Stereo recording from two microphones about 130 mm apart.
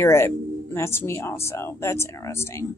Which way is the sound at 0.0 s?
20° left (ahead or behind).